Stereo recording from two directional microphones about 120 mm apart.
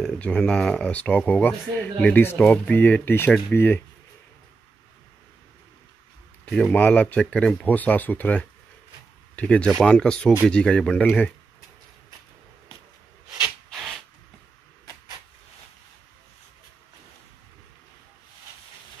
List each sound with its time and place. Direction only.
0.0 s speech: 5° left (ahead or behind)
6.5 s speech: 10° left (ahead or behind)